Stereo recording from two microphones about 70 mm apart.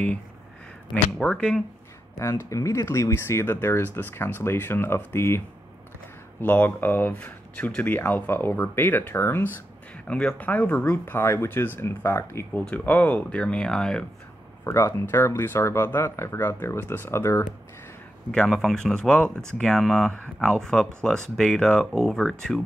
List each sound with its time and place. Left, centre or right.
1.1 s speech: centre
2.1 s speech: left
6.4 s speech: left
10.0 s speech: centre; by 12.4 s left
12.5 s speech: left; by 14.0 s centre
14.6 s speech: left
18.5 s speech: centre
20.1 s speech: centre